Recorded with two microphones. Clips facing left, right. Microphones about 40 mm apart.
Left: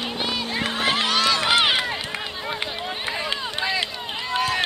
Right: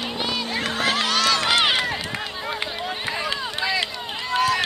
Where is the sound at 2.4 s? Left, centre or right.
Centre.